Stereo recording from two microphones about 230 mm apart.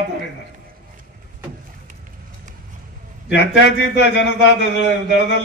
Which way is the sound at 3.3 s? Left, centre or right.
Left.